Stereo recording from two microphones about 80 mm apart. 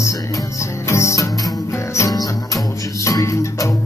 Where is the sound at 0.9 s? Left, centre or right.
Left.